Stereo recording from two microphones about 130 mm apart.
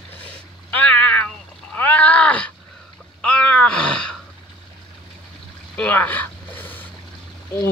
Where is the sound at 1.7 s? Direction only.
15° left (ahead or behind).